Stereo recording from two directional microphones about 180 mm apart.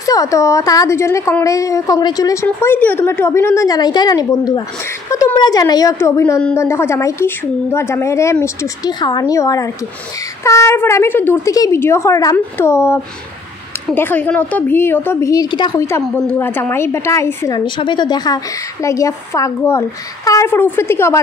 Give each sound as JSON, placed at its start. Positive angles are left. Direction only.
{"t": 0.0, "sound": "a woman's voice", "side_deg": 20}
{"t": 15.7, "sound": "a woman's voice", "side_deg": 10}
{"t": 17.6, "sound": "a woman's voice", "side_deg": 25}